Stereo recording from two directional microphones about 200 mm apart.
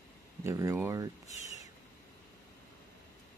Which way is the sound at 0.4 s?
15° right (ahead or behind).